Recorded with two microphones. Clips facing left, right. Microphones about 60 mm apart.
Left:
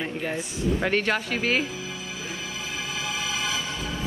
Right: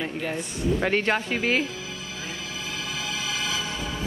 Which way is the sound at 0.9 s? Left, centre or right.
Centre.